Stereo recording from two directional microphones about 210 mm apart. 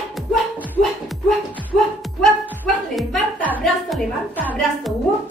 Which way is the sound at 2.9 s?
Centre (ahead or behind).